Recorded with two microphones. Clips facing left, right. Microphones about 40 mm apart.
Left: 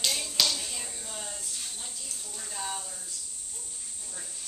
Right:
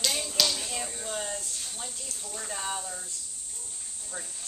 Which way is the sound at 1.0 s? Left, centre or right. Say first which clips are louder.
Right 6 dB; right.